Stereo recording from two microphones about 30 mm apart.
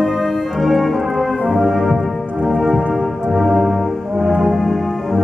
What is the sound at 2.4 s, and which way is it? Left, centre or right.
Music, centre.